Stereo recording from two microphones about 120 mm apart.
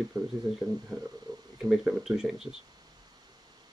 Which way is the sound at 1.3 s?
35° right (ahead or behind).